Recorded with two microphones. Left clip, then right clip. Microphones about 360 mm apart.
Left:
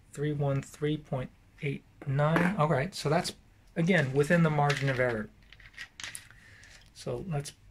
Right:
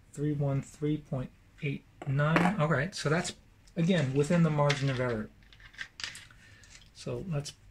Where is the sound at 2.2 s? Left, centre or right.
Centre.